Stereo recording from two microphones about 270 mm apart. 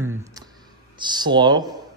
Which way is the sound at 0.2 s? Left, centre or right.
Centre.